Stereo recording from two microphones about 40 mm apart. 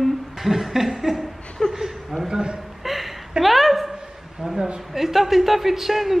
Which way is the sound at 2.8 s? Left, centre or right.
Centre.